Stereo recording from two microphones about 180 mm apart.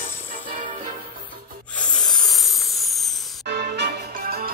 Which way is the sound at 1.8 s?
5° left (ahead or behind).